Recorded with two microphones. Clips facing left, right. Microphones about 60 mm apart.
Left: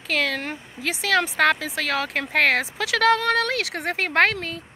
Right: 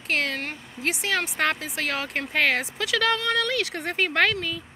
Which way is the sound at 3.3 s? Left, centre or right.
Left.